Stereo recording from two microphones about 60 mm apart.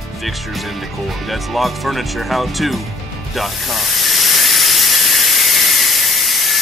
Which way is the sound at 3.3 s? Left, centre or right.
Centre.